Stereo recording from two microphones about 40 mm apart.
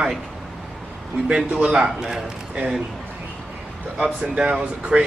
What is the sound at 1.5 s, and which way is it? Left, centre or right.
Speech, right.